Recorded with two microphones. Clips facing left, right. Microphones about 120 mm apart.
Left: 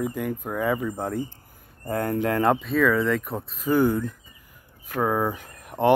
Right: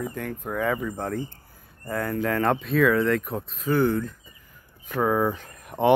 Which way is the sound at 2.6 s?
Centre (ahead or behind).